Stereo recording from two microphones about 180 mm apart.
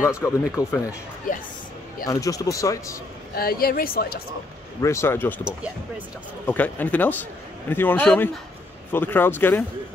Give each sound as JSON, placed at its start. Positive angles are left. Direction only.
{"t": 0.0, "sound": "speech", "side_deg": 15}
{"t": 1.3, "sound": "speech", "side_deg": 50}
{"t": 2.0, "sound": "speech", "side_deg": 20}
{"t": 3.3, "sound": "a woman's voice", "side_deg": 55}
{"t": 4.8, "sound": "speech", "side_deg": 15}
{"t": 6.4, "sound": "speech", "side_deg": 10}